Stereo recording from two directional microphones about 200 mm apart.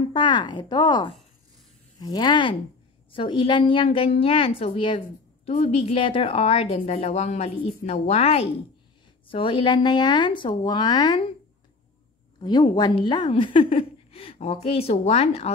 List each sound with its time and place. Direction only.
0.1 s a woman's voice: 25° left (ahead or behind)
12.4 s a woman's voice: 25° left (ahead or behind)